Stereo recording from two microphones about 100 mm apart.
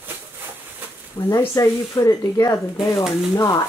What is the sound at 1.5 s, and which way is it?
Speech, 35° left (ahead or behind).